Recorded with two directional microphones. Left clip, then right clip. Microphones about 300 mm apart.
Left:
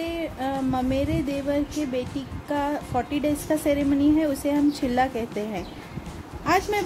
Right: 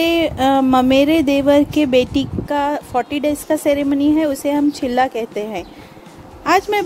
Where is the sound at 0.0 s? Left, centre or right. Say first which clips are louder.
Right 13 dB; right.